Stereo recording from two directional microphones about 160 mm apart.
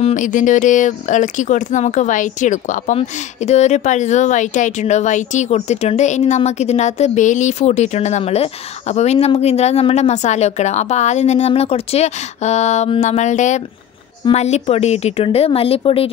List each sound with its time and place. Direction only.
0.0 s speech: 50° left (ahead or behind); by 16.1 s 35° left (ahead or behind)